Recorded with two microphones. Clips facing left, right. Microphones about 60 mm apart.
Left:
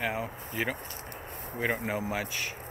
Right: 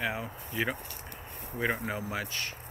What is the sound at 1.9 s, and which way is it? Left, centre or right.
Speech, centre.